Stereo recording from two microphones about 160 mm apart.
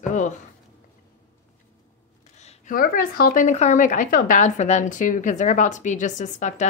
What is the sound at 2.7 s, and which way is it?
Speech, 65° left (ahead or behind).